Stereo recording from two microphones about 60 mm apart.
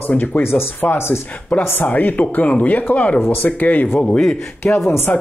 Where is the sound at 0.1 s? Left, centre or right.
Left.